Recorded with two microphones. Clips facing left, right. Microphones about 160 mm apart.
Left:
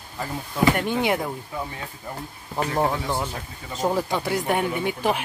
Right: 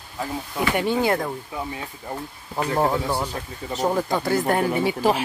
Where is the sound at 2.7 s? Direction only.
10° right (ahead or behind).